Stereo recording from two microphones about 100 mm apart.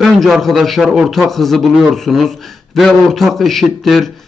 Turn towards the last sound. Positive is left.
turn(degrees=0)  # may be behind; listen again after turning